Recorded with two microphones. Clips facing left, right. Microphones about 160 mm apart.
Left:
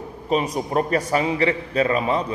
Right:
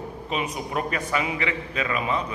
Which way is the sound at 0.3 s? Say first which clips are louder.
Left 7 dB; 35° left (ahead or behind).